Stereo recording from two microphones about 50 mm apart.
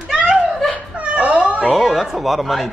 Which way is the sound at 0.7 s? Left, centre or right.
Right.